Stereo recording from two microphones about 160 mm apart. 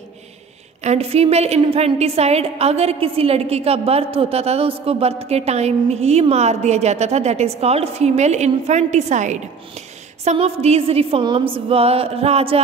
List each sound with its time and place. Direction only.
0.8 s a woman's voice: 40° right (ahead or behind)